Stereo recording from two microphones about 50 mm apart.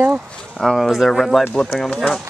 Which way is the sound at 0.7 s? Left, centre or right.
Centre.